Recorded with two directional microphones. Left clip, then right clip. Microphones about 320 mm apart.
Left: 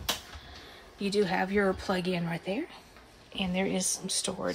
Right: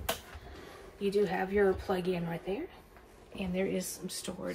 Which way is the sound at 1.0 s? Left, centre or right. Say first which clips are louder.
Left 2 dB; centre.